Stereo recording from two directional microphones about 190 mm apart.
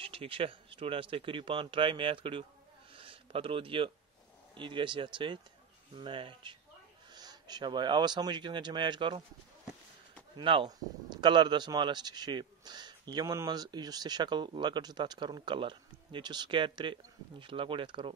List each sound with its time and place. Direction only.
0.0 s a man's voice: 30° right (ahead or behind)
2.9 s a sound: 30° right (ahead or behind)
4.6 s a man's voice: 25° right (ahead or behind)
10.3 s a man's voice: 25° right (ahead or behind)